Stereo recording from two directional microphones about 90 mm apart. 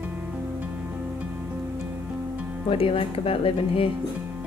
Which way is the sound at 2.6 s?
90° left.